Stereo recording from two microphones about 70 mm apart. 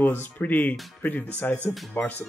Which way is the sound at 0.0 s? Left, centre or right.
Left.